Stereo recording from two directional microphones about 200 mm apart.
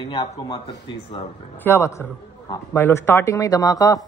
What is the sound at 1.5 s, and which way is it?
A man's voice, 15° left (ahead or behind).